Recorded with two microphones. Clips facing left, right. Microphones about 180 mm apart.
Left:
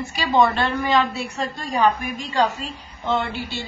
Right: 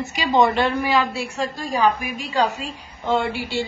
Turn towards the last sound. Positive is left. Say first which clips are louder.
# right 3 dB
turn(degrees=-15)  # may be behind; listen again after turning